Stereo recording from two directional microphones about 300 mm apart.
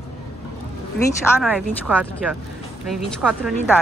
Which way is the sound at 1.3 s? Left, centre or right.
Centre.